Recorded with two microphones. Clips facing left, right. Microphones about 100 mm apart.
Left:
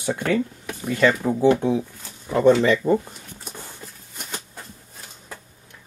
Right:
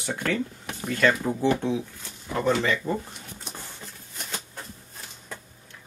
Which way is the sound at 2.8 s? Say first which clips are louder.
Left 9 dB; 45° left (ahead or behind).